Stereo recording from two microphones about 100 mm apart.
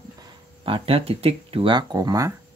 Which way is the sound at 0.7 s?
65° right (ahead or behind).